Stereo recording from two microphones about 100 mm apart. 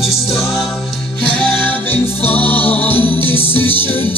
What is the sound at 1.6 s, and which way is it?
Music, 20° left (ahead or behind).